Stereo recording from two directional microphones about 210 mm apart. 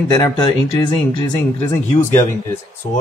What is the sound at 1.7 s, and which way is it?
Speech, 15° left (ahead or behind).